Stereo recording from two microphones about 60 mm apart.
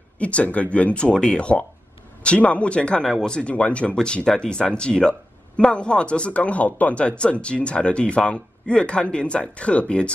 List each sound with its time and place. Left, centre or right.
0.2 s speech: left